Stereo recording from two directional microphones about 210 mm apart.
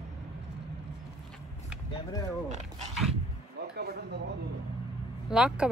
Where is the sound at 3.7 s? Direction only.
50° right (ahead or behind).